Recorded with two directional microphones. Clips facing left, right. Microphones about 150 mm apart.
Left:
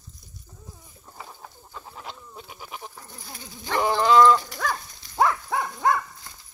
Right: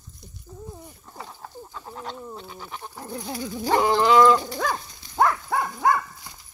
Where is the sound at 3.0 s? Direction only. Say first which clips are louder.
Right 12 dB; 75° right (ahead or behind).